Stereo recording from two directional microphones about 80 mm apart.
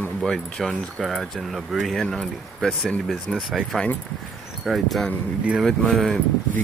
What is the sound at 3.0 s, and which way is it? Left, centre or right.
Speech, centre.